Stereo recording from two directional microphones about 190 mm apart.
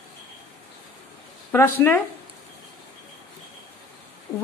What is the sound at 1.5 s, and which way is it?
Speech, 10° left (ahead or behind).